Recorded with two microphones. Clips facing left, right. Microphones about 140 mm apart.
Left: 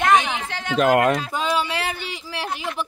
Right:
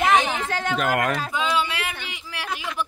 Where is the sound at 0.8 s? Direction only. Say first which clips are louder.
Left 9 dB; 35° left (ahead or behind).